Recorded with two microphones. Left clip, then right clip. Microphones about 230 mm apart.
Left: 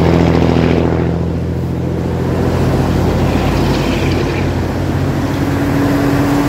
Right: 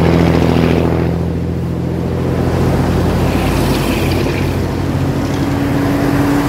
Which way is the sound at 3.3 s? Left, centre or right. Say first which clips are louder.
Even; right.